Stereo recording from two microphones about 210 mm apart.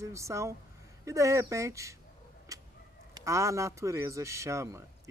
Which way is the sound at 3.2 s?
15° right (ahead or behind).